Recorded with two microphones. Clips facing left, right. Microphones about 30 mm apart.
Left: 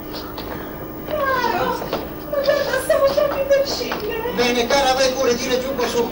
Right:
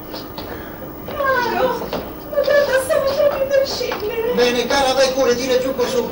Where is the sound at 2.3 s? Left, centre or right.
Centre.